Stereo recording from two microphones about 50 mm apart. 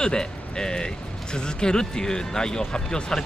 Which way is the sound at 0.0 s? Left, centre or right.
Centre.